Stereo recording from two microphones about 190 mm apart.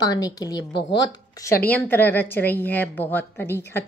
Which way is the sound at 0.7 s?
75° left (ahead or behind).